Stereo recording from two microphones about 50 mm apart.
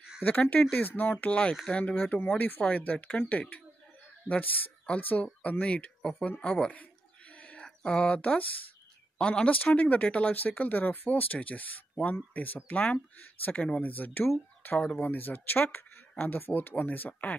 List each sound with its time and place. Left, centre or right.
0.2 s speech: left
2.2 s speech: left
6.1 s a sound: left
7.6 s speech: centre; by 17.4 s left